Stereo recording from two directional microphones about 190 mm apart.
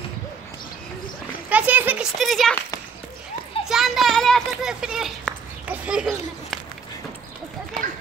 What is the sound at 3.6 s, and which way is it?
Children playing, centre (ahead or behind).